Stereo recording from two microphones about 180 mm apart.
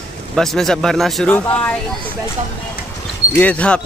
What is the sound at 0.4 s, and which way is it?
Speech, centre (ahead or behind).